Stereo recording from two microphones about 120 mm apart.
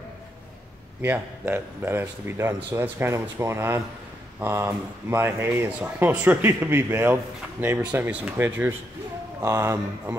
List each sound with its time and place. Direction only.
1.0 s a man's voice: 20° right (ahead or behind)